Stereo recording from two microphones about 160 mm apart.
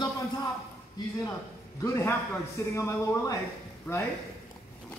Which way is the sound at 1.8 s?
20° left (ahead or behind).